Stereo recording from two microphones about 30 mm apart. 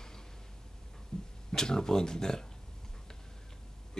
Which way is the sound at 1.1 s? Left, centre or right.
Left.